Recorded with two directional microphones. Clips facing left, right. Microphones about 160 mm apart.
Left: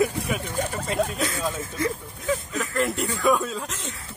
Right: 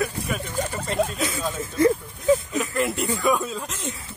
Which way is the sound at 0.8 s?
Centre (ahead or behind).